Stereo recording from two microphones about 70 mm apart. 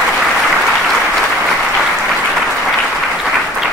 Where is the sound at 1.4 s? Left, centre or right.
Centre.